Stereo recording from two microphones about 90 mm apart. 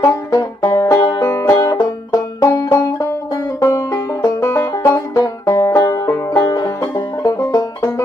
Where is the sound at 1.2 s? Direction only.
35° left (ahead or behind).